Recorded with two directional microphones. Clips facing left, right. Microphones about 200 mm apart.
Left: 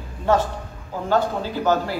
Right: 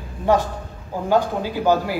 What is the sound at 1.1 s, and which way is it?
Speech, 10° right (ahead or behind).